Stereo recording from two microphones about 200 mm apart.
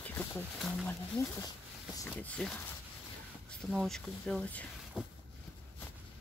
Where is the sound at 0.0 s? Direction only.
10° left (ahead or behind).